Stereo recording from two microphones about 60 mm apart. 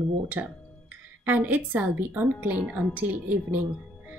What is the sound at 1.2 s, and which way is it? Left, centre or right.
Speech, right.